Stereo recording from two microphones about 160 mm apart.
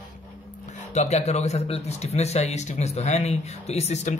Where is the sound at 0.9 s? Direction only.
45° left (ahead or behind).